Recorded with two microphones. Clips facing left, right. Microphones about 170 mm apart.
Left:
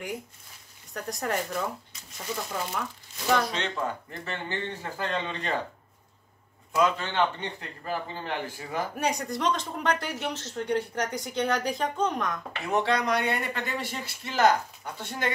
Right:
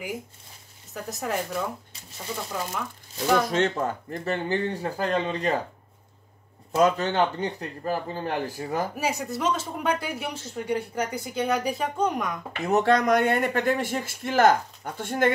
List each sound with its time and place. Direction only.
0.9 s speech: 5° right (ahead or behind)
3.4 s speech: 45° right (ahead or behind)
6.8 s speech: 40° right (ahead or behind)
8.9 s speech: 5° right (ahead or behind)
12.6 s speech: 45° right (ahead or behind)